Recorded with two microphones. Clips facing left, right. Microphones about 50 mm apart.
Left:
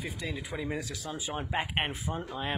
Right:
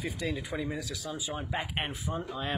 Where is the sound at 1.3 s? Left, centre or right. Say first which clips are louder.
Left 4 dB; centre.